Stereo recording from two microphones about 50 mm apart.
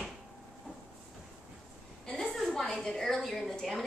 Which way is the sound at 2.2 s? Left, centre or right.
Centre.